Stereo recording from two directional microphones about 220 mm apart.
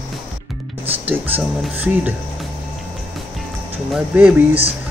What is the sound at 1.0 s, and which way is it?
Speech, 10° right (ahead or behind).